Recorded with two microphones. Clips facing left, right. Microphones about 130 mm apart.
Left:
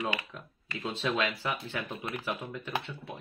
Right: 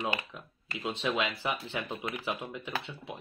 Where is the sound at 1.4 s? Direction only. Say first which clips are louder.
Right 1 dB; 20° right (ahead or behind).